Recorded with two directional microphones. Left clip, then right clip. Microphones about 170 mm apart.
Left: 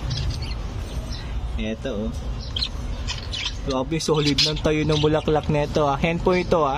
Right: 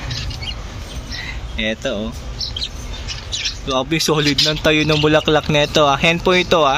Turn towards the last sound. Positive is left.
turn(degrees=5)  # may be behind; listen again after turning